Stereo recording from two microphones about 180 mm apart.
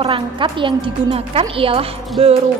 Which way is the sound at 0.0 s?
30° right (ahead or behind).